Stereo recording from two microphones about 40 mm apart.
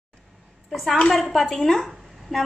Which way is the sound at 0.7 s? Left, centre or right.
Centre.